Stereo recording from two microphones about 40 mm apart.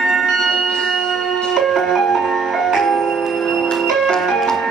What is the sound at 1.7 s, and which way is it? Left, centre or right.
Music, centre.